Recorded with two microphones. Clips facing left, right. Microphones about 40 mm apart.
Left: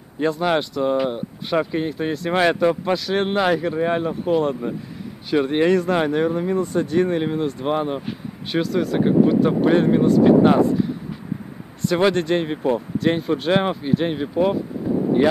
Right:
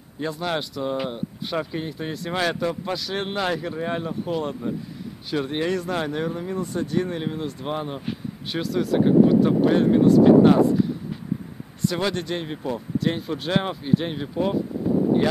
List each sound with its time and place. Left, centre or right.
0.2 s speech: centre
11.9 s speech: left